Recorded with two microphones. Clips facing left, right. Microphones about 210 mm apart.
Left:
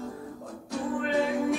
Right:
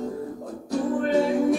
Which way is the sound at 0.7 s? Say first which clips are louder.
Right 6 dB; 45° right (ahead or behind).